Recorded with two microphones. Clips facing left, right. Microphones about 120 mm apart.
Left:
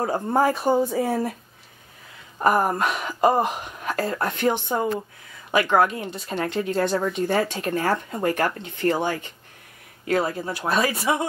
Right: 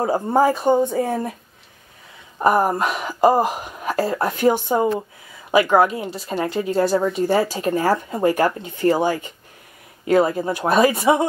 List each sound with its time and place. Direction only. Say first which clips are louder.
0.0 s speech: right 4 dB; 5° right (ahead or behind)
2.3 s speech: right 3 dB; centre (ahead or behind); by 11.2 s 20° right (ahead or behind)